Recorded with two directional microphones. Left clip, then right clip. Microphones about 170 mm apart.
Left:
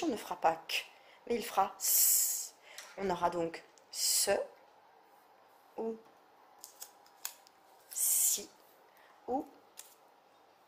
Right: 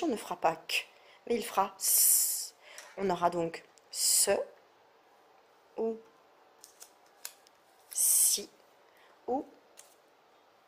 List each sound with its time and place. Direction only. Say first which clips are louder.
0.0 s speech: right 1 dB; 25° right (ahead or behind)
5.8 s music: right 5 dB; 25° right (ahead or behind)
6.6 s scissors: left 3 dB; 10° right (ahead or behind)
7.9 s a sound: right 4 dB; 25° right (ahead or behind)
9.3 s speech: right 3 dB; 25° right (ahead or behind)